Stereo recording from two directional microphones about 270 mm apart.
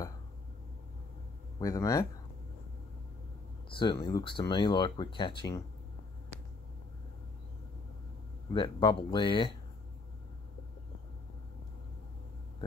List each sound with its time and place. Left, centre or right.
1.6 s speech: centre
3.7 s speech: centre
8.5 s speech: centre